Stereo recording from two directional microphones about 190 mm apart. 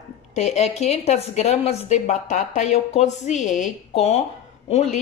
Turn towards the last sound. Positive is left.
turn(degrees=35)  # may be behind; listen again after turning